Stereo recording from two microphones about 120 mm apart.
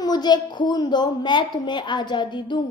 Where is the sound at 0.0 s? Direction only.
35° left (ahead or behind).